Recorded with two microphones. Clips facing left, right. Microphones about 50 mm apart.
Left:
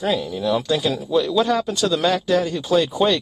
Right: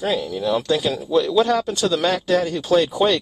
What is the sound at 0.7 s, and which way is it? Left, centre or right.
Speech, centre.